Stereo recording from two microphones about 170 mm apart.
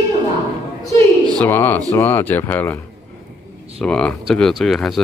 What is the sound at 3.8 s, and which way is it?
Speech, 5° left (ahead or behind).